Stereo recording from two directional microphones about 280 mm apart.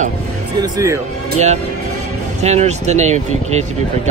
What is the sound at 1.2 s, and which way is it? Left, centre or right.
Speech, right.